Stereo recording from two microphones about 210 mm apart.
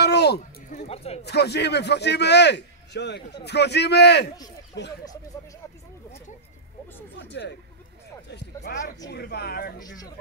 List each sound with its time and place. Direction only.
0.0 s a sound: 50° left (ahead or behind)
0.7 s speech: 30° left (ahead or behind)
1.2 s a man's voice: 50° left (ahead or behind)
7.2 s a man's voice: 55° left (ahead or behind)
8.7 s a man's voice: 45° left (ahead or behind)
9.8 s speech: 20° left (ahead or behind)